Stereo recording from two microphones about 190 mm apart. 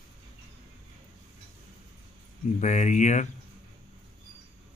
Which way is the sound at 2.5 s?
40° left (ahead or behind).